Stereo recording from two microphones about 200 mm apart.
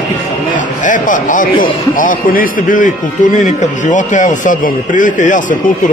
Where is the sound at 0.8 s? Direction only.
40° left (ahead or behind).